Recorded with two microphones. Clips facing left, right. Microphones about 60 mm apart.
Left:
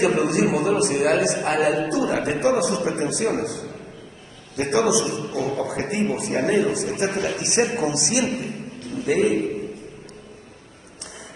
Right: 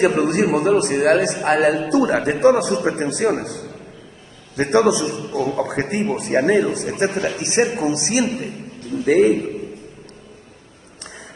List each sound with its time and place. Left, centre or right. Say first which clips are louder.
0.0 s a man's voice: right 3 dB; right